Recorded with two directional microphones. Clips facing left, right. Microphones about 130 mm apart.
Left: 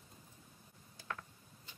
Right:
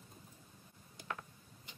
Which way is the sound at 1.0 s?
15° right (ahead or behind).